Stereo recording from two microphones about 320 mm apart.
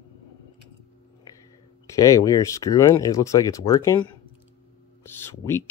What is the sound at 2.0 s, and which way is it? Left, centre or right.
Speech, centre.